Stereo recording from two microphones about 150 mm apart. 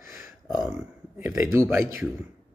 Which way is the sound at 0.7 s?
20° right (ahead or behind).